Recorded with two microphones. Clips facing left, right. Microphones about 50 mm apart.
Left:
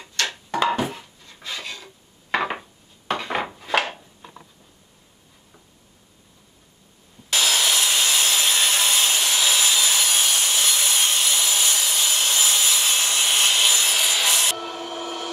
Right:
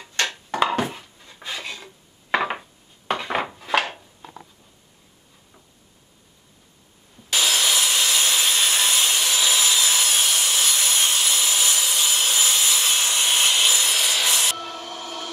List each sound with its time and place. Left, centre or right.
0.3 s a sound: centre
1.2 s filing: centre
2.3 s dishes: centre
7.2 s wood: centre
14.7 s music: centre